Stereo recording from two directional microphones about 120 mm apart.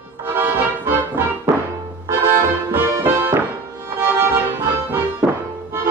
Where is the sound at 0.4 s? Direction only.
20° right (ahead or behind).